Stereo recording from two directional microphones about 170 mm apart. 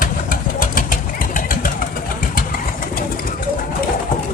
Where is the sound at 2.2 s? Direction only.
55° left (ahead or behind).